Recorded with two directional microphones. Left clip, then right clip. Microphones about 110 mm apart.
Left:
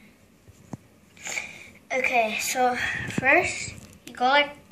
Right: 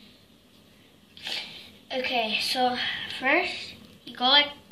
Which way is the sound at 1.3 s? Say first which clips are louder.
Left 1 dB; 5° right (ahead or behind).